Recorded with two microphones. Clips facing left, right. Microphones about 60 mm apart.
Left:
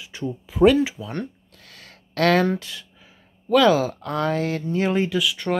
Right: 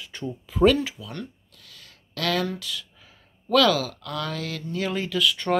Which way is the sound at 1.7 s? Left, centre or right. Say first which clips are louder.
Left 4 dB; left.